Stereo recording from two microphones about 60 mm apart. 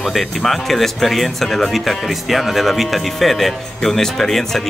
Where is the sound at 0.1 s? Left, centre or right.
Centre.